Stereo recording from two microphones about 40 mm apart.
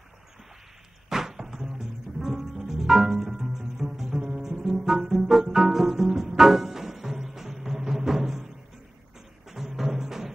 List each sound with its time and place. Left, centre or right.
1.0 s music: centre
9.5 s music: centre